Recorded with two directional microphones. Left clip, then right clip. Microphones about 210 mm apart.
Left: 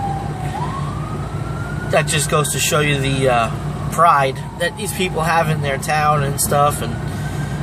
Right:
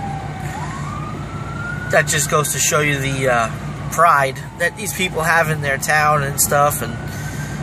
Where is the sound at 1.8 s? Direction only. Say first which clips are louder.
Right 1 dB; 5° right (ahead or behind).